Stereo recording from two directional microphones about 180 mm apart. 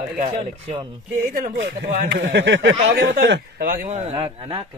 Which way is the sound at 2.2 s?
90° right.